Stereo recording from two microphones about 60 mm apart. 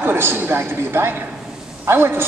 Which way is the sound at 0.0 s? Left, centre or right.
Right.